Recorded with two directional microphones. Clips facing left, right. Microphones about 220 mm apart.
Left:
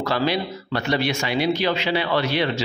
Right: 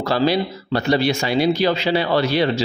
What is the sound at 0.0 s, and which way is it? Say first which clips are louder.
A man's voice: right 4 dB; 35° right (ahead or behind).